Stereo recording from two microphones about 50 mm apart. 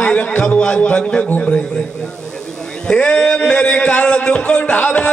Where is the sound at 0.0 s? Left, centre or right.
Left.